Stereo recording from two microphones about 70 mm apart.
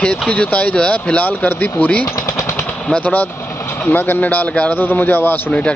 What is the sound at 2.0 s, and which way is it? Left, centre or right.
Machine gun, left.